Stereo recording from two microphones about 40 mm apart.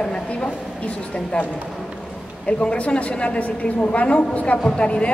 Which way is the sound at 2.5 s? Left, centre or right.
Left.